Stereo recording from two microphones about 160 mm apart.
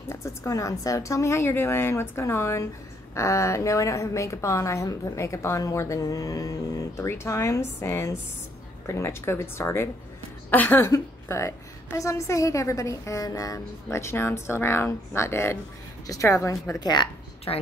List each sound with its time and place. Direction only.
0.1 s a woman's voice: 15° left (ahead or behind)